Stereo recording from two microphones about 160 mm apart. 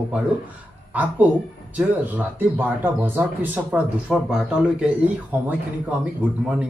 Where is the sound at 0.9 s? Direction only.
10° right (ahead or behind).